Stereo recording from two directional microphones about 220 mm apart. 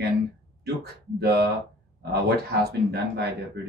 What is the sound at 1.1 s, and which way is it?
Speech, 50° right (ahead or behind).